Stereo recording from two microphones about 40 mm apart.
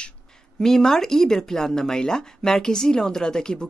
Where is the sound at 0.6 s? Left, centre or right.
Centre.